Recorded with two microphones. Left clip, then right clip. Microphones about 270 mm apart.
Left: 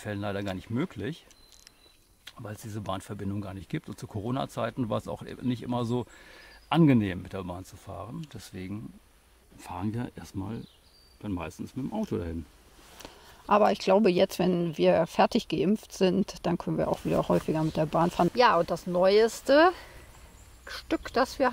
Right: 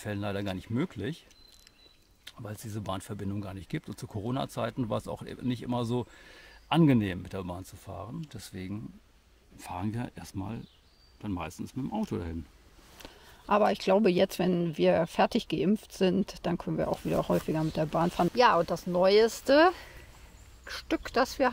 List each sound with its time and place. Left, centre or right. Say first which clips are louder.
0.0 s speech: left 1 dB; centre
2.2 s speech: left 1 dB; centre
11.2 s speech: left 1 dB; right
13.0 s speech: left 3 dB; centre